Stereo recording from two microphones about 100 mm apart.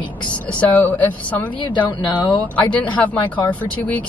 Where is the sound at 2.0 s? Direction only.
50° left (ahead or behind).